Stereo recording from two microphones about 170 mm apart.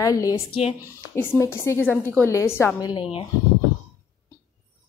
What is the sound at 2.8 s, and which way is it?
Speech, 30° left (ahead or behind).